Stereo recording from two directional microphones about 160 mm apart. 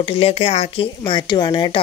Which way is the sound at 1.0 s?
30° left (ahead or behind).